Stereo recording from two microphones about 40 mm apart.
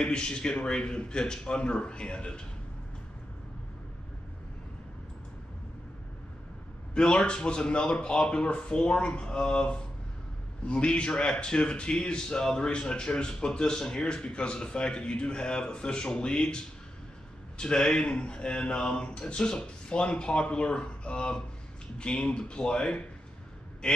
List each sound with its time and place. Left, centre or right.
0.0 s speech: left
6.9 s speech: left
18.8 s a sound: centre
19.0 s speech: left